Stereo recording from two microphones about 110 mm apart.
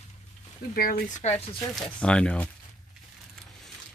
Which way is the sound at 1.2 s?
90° left.